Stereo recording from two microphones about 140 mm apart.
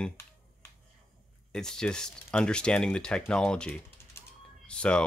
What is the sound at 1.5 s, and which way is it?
Speech, 5° left (ahead or behind).